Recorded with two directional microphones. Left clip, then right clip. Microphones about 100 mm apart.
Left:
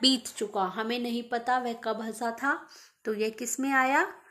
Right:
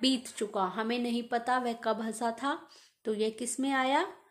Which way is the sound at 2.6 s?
35° right (ahead or behind).